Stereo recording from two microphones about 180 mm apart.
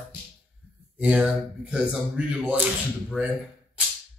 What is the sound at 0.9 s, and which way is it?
Speech, 5° right (ahead or behind).